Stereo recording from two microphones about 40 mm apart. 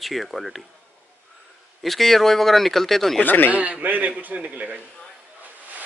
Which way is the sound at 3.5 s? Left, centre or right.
Right.